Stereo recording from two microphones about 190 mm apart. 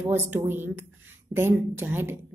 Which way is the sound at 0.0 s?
10° right (ahead or behind).